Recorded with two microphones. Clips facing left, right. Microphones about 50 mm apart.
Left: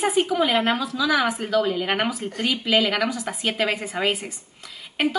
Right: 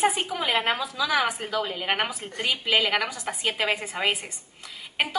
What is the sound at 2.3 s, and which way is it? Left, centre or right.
A woman's voice, centre.